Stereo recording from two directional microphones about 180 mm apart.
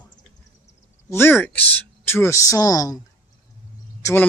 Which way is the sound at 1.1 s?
10° left (ahead or behind).